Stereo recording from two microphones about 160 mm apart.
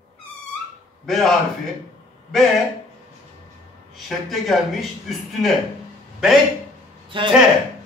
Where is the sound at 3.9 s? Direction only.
Centre (ahead or behind).